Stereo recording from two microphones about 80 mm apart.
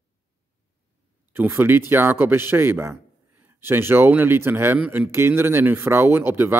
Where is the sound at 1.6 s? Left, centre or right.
Right.